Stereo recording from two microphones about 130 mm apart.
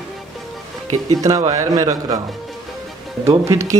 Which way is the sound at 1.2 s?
25° right (ahead or behind).